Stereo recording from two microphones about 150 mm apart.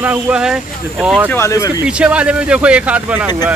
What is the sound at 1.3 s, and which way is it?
Speech, 20° left (ahead or behind).